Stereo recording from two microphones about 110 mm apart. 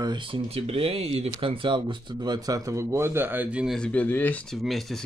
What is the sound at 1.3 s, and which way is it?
Speech, 50° right (ahead or behind).